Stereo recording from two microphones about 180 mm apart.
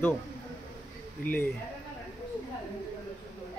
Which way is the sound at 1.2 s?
10° left (ahead or behind).